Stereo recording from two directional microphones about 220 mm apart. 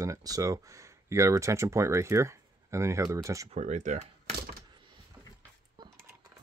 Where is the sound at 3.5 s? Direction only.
30° right (ahead or behind).